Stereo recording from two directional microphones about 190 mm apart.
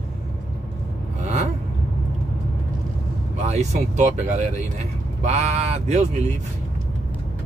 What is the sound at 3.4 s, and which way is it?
Speech, 35° right (ahead or behind).